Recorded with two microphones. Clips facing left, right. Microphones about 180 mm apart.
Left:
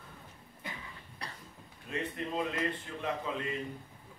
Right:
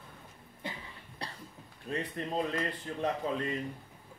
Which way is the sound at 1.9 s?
35° right (ahead or behind).